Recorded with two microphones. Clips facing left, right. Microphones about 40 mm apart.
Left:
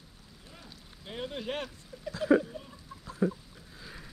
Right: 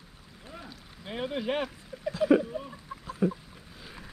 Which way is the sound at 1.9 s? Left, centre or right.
Right.